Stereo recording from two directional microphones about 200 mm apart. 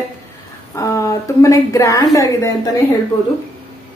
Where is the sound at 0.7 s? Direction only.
15° left (ahead or behind).